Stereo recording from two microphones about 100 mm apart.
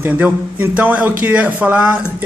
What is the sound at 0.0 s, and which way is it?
A man's voice, 15° right (ahead or behind).